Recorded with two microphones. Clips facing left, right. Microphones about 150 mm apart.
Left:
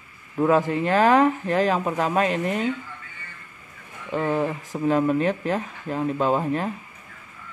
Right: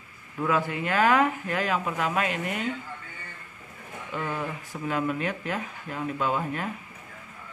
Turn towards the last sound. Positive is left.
turn(degrees=35)  # may be behind; listen again after turning